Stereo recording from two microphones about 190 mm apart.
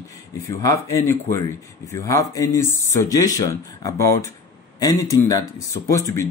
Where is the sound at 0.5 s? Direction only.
15° left (ahead or behind).